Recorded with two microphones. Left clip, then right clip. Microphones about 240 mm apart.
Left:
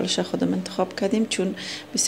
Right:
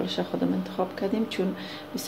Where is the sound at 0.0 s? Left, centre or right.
Left.